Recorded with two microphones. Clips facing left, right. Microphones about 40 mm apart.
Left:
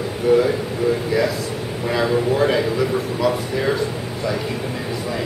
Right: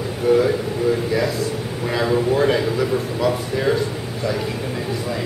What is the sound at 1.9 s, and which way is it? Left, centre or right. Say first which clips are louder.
A man's voice: even; centre.